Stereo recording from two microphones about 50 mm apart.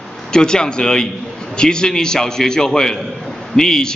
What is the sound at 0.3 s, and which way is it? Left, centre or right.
A man's voice, centre.